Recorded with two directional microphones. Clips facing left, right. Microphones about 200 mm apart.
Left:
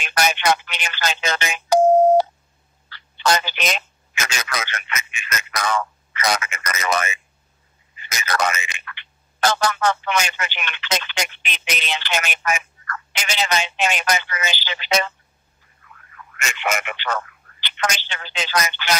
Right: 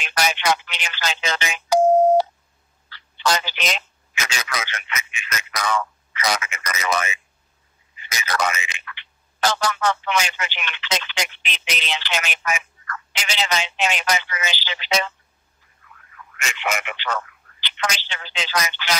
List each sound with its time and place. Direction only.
0.0 s speech: 50° left (ahead or behind)
16.4 s speech: 45° left (ahead or behind)